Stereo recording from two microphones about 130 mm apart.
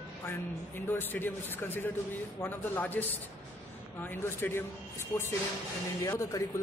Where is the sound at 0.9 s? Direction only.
15° left (ahead or behind).